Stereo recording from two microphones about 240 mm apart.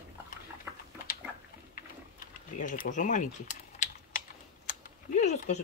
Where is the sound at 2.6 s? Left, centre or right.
Left.